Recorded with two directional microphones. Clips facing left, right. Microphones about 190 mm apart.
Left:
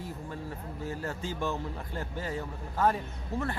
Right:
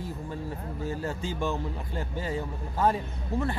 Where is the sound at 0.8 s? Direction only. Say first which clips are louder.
Right 3 dB; 30° right (ahead or behind).